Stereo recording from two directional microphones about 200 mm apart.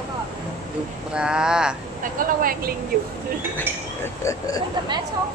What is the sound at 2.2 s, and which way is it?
Speech, 45° right (ahead or behind).